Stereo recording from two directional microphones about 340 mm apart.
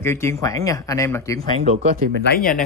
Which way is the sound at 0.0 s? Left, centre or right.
Centre.